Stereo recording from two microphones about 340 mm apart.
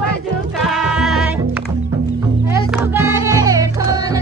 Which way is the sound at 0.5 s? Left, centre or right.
Centre.